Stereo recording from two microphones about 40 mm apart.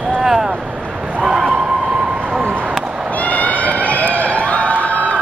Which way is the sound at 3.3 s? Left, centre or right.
Left.